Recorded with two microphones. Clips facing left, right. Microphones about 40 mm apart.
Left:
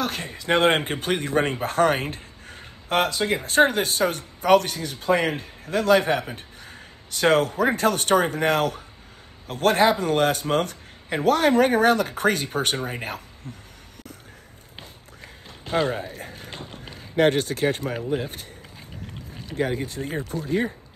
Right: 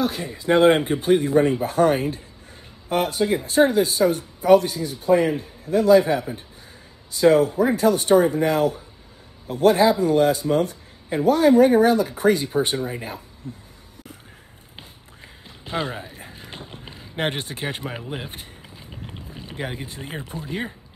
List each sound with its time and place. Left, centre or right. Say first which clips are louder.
0.0 s speech: right 4 dB; left
16.2 s a sound: left 2 dB; centre
16.7 s run: even; right
17.2 s speech: left 6 dB; right
19.5 s speech: left 6 dB; centre